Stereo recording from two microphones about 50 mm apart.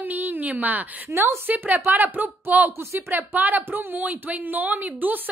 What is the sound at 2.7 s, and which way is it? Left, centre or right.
Speech, right.